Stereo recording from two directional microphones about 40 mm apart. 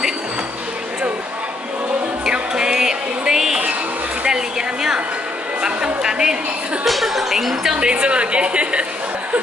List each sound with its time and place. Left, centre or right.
2.2 s music: centre
4.3 s a sound: centre
6.8 s speech: centre
7.7 s a woman's voice: right